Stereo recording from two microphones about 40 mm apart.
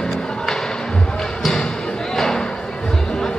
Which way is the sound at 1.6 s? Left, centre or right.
Left.